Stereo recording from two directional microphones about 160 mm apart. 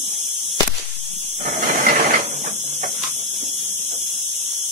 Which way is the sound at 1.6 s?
60° right (ahead or behind).